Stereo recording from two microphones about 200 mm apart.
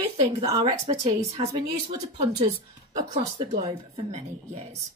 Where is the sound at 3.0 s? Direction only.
25° right (ahead or behind).